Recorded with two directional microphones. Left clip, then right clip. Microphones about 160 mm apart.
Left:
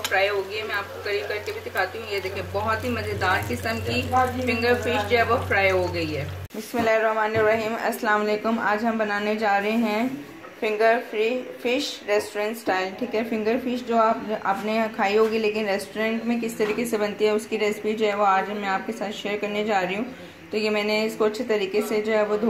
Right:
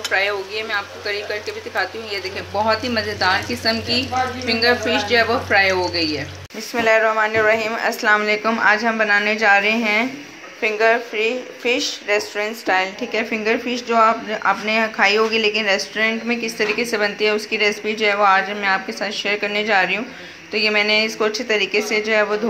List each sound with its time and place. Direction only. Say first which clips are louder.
3.2 s speech: right 4 dB; 60° right (ahead or behind)
6.7 s speech: right 5 dB; centre (ahead or behind)